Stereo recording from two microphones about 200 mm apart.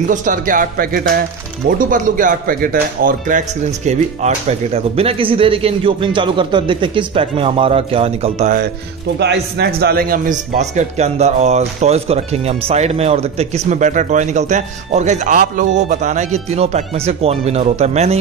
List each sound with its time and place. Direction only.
0.1 s speech: 40° right (ahead or behind)
9.2 s a man's voice: 55° right (ahead or behind); by 18.1 s 35° right (ahead or behind)